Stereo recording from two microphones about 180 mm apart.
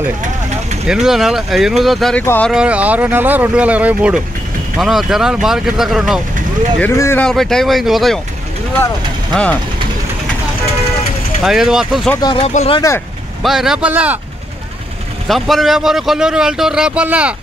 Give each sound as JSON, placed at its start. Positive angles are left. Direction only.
{"t": 0.8, "sound": "a man's voice", "side_deg": -5}
{"t": 2.5, "sound": "a man's voice", "side_deg": -5}
{"t": 6.8, "sound": "a man's voice", "side_deg": 15}
{"t": 9.3, "sound": "speech", "side_deg": 5}
{"t": 11.4, "sound": "a man's voice", "side_deg": 0}
{"t": 12.2, "sound": "speech", "side_deg": 25}
{"t": 13.4, "sound": "a man's voice", "side_deg": 0}
{"t": 15.2, "sound": "a man's voice", "side_deg": 0}